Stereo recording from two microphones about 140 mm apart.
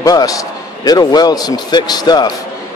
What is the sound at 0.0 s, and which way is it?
A man's voice, 25° left (ahead or behind).